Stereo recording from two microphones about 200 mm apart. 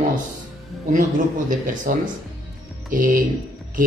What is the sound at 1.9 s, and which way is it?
Speech, 45° right (ahead or behind).